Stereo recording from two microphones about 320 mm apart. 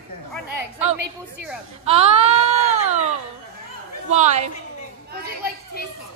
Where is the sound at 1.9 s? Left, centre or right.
Centre.